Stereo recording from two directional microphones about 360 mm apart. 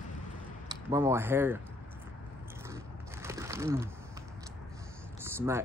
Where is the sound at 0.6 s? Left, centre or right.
Centre.